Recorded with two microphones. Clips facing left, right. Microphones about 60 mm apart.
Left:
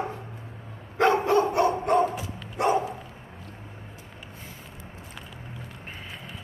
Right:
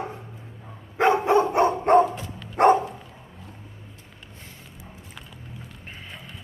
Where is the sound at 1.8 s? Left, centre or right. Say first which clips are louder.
Right 5 dB; right.